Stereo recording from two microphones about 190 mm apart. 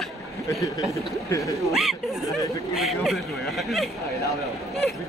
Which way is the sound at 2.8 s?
Centre (ahead or behind).